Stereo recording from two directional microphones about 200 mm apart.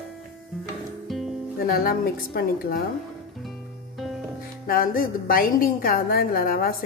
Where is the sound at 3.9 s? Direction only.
Centre (ahead or behind).